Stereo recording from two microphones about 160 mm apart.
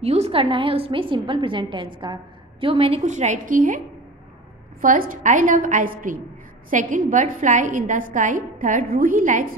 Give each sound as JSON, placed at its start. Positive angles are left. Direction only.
{"t": 0.0, "sound": "a woman's voice", "side_deg": -40}
{"t": 3.0, "sound": "a woman's voice", "side_deg": -50}
{"t": 4.8, "sound": "a woman's voice", "side_deg": -60}